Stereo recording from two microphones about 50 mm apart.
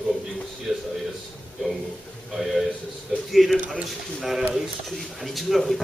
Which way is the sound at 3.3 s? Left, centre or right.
Centre.